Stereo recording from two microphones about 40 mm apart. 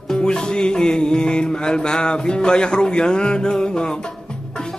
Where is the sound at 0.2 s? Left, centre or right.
Centre.